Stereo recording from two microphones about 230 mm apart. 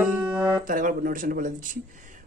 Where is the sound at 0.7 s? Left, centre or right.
Right.